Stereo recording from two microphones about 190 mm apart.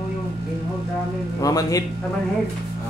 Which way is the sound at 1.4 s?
20° left (ahead or behind).